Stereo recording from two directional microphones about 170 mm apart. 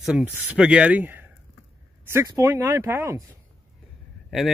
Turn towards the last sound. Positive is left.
turn(degrees=0)  # may be behind; listen again after turning